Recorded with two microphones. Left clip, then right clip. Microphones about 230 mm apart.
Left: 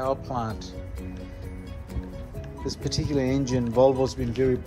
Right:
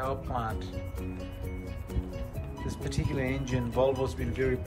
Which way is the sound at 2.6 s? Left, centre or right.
Left.